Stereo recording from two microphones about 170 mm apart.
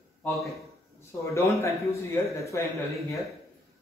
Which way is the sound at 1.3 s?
15° left (ahead or behind).